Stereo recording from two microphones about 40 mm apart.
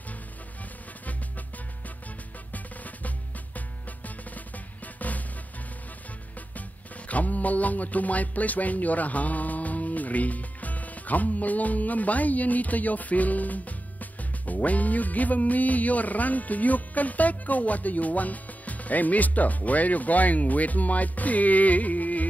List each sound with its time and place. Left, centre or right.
2.5 s drum: left
4.9 s music: left
7.1 s music: left
14.4 s speech: left